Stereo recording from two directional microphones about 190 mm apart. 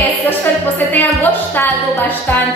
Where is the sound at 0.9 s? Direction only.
10° left (ahead or behind).